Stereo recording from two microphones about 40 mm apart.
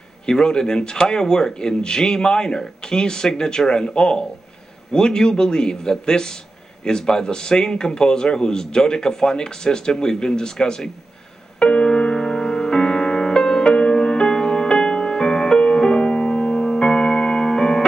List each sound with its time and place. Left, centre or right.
0.3 s speech: centre
11.6 s music: left